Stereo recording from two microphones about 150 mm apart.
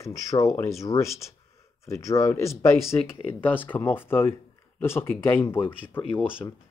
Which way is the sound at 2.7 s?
5° right (ahead or behind).